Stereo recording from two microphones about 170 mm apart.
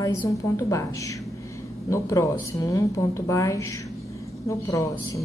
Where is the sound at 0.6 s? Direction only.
20° left (ahead or behind).